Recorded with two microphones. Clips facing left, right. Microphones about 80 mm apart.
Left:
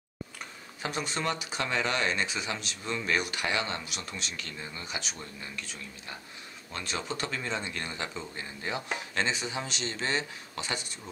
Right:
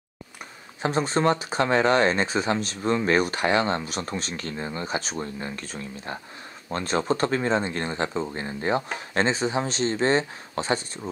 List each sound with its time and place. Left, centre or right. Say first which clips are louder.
0.8 s speech: right 10 dB; right